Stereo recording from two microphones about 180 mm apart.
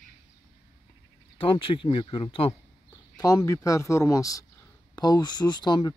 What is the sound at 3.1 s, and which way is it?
Speech, 20° left (ahead or behind).